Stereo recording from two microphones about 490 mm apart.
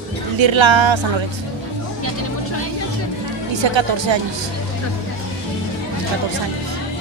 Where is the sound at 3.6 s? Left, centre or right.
Right.